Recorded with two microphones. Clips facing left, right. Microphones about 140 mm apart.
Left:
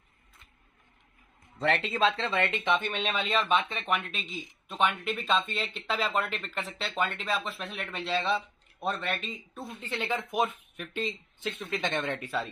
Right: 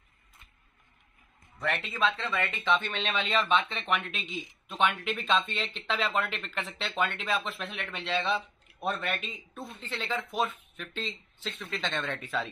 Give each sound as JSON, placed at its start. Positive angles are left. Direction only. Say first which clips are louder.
{"t": 1.6, "sound": "speech", "louder": "left 4 dB", "side_deg": 30}
{"t": 3.0, "sound": "speech", "louder": "even", "side_deg": 10}
{"t": 9.8, "sound": "speech", "louder": "left 2 dB", "side_deg": 20}